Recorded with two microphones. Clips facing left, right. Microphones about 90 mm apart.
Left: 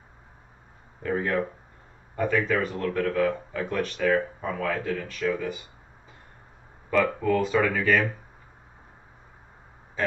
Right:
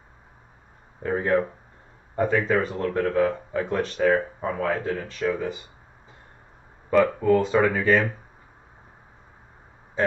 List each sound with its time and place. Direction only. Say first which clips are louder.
1.0 s speech: right 4 dB; 30° right (ahead or behind)
7.2 s speech: right 4 dB; 25° right (ahead or behind)
10.0 s a sound: right 4 dB; 30° right (ahead or behind)